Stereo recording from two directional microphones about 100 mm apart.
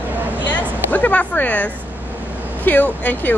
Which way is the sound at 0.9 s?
15° left (ahead or behind).